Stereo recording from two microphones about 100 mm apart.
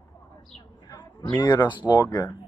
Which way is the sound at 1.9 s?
35° left (ahead or behind).